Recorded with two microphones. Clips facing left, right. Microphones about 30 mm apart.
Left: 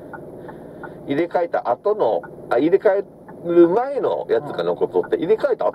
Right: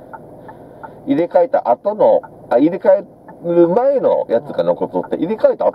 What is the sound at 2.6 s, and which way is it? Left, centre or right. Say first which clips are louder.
Speech: right 1 dB; left.